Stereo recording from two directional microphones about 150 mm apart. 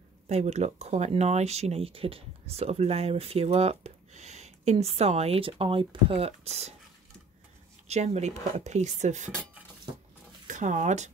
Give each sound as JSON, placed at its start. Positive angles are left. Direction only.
{"t": 0.3, "sound": "speech", "side_deg": -50}
{"t": 7.9, "sound": "speech", "side_deg": -50}
{"t": 10.4, "sound": "speech", "side_deg": -55}